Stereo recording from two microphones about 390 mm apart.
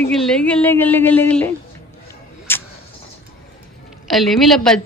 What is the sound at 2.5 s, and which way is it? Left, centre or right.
Vehicle, centre.